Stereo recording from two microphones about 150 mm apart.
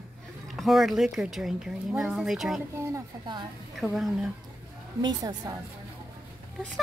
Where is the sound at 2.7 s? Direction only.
20° right (ahead or behind).